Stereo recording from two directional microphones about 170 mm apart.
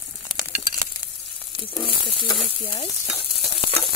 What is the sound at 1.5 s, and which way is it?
Sizzle, 30° left (ahead or behind).